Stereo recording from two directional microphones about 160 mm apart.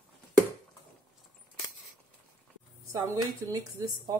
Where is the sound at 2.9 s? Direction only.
20° right (ahead or behind).